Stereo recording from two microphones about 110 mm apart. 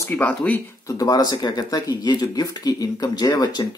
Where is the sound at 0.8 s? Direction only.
35° left (ahead or behind).